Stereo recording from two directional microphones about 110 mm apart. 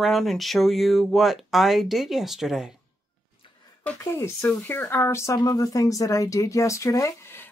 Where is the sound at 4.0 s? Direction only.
25° left (ahead or behind).